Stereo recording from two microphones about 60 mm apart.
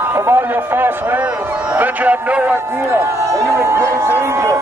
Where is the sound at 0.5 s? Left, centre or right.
Right.